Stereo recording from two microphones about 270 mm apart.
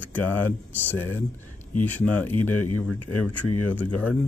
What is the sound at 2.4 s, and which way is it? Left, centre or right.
Speech, left.